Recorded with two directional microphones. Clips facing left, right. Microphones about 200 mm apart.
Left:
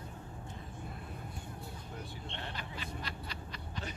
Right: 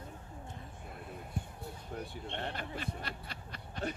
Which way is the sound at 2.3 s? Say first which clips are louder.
Right 6 dB; 50° right (ahead or behind).